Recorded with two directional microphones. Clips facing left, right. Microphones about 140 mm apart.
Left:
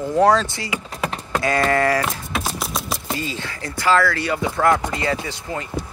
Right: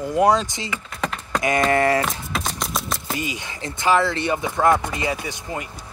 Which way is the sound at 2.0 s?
5° left (ahead or behind).